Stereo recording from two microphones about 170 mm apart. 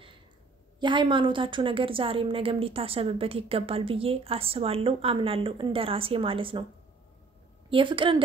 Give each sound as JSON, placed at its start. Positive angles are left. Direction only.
{"t": 0.7, "sound": "a woman's voice", "side_deg": -30}
{"t": 7.7, "sound": "a woman's voice", "side_deg": -30}